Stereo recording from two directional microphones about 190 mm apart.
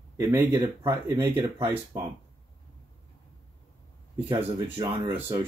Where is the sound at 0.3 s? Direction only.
10° right (ahead or behind).